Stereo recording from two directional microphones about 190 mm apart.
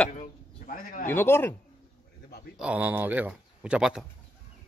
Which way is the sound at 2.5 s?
5° right (ahead or behind).